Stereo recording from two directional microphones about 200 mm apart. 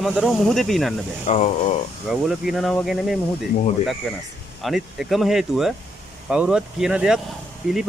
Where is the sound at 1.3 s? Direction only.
35° left (ahead or behind).